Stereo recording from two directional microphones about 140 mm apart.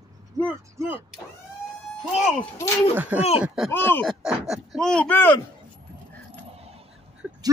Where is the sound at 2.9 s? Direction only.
10° right (ahead or behind).